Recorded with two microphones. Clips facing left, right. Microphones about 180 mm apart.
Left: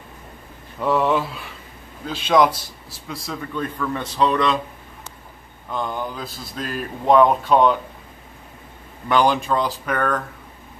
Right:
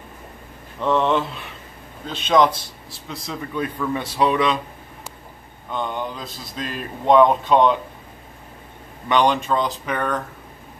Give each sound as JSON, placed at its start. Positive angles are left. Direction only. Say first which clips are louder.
{"t": 0.7, "sound": "speech", "louder": "even", "side_deg": 5}
{"t": 3.5, "sound": "a man's voice", "louder": "right 2 dB", "side_deg": -10}
{"t": 5.7, "sound": "speech", "louder": "even", "side_deg": 5}
{"t": 9.1, "sound": "speech", "louder": "even", "side_deg": 5}